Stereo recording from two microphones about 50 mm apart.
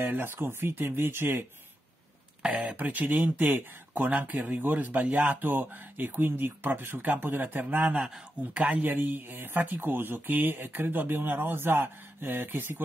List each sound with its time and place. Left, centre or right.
0.0 s speech: right
2.6 s speech: right
7.8 s a man's voice: right